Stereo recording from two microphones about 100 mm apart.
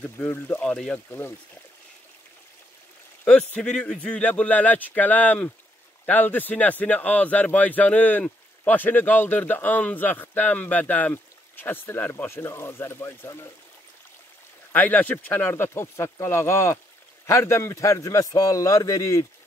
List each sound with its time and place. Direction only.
0.0 s speech: 15° left (ahead or behind)
3.3 s speech: 10° left (ahead or behind); by 13.5 s 25° left (ahead or behind)
14.7 s a man's voice: 15° left (ahead or behind); by 19.2 s 35° left (ahead or behind)